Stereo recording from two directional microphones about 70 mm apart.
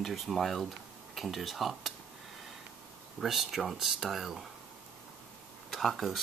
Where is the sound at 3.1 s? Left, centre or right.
Centre.